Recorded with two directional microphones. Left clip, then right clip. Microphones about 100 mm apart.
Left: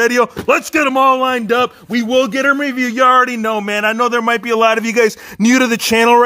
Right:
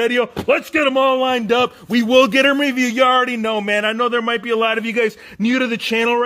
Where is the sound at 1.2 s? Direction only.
5° left (ahead or behind).